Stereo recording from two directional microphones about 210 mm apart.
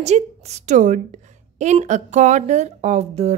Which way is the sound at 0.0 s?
30° right (ahead or behind).